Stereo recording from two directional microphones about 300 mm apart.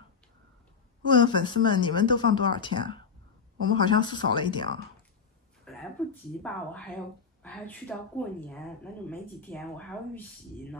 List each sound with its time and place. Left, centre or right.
1.0 s speech: centre
5.7 s a sound: centre
6.4 s speech: centre